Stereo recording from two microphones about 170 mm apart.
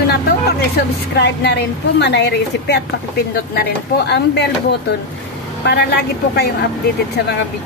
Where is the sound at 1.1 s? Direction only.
85° left.